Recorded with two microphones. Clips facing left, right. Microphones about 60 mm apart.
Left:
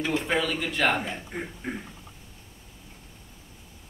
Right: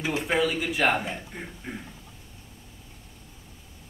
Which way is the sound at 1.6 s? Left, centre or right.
Left.